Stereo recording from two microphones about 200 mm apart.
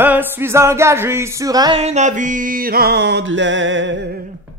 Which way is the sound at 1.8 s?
35° right (ahead or behind).